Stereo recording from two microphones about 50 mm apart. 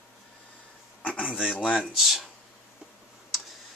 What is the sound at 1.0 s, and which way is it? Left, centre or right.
Speech, left.